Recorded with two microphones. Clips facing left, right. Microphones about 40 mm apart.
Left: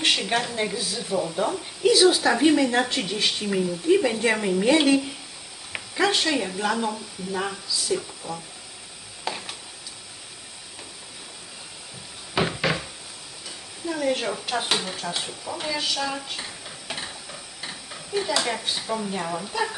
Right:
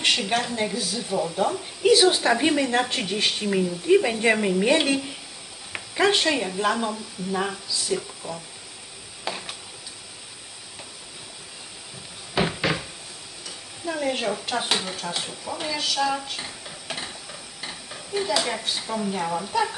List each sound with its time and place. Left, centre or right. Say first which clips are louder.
0.0 s speech: even; centre
1.9 s a woman's voice: even; right
2.4 s speech: left 2 dB; centre
6.0 s speech: right 2 dB; centre
6.7 s speech: even; centre
9.2 s a sound: even; centre
12.4 s cupboard open or close: even; centre
13.8 s speech: even; centre